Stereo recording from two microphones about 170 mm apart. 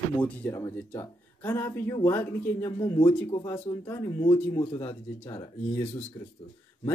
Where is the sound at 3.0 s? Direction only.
30° left (ahead or behind).